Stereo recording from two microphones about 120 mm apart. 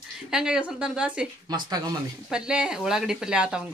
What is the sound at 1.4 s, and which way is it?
Speech, 35° right (ahead or behind).